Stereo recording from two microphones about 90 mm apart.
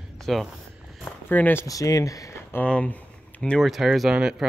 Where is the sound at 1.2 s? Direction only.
20° left (ahead or behind).